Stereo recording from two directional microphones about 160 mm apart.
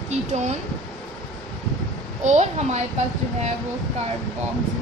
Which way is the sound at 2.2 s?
45° right (ahead or behind).